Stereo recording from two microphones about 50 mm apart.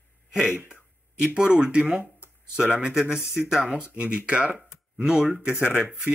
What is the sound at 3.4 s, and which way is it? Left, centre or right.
Speech, centre.